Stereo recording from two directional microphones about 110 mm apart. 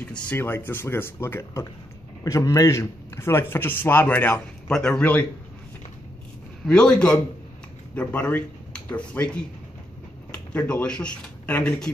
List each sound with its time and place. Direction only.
0.3 s a man's voice: 20° left (ahead or behind)
6.6 s a man's voice: 5° left (ahead or behind)